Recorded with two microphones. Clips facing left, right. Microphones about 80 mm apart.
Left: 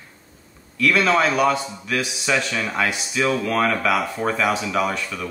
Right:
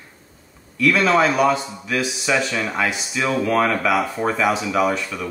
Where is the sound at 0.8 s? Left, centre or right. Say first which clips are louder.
Right 2 dB; centre.